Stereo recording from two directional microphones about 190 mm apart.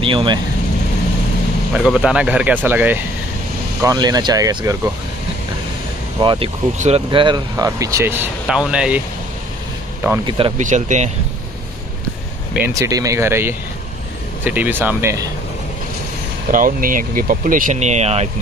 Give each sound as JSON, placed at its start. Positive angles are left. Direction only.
{"t": 0.0, "sound": "speech", "side_deg": -25}
{"t": 1.7, "sound": "speech", "side_deg": -5}
{"t": 3.8, "sound": "speech", "side_deg": -20}
{"t": 6.1, "sound": "speech", "side_deg": -25}
{"t": 10.2, "sound": "speech", "side_deg": -30}
{"t": 10.6, "sound": "speech", "side_deg": -40}
{"t": 12.6, "sound": "speech", "side_deg": -15}
{"t": 16.4, "sound": "speech", "side_deg": -45}